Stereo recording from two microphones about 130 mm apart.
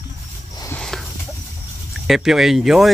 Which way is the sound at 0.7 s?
5° left (ahead or behind).